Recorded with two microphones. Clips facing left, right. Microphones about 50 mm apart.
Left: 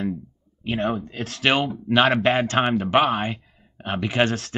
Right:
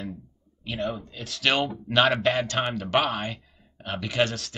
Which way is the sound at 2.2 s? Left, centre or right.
Left.